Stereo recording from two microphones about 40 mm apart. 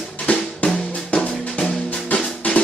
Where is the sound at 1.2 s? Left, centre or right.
Left.